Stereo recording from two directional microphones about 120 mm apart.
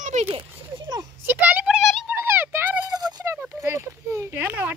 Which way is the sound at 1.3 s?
15° right (ahead or behind).